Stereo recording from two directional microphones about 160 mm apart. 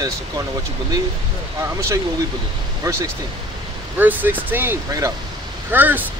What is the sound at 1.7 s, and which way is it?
Speech, 20° right (ahead or behind).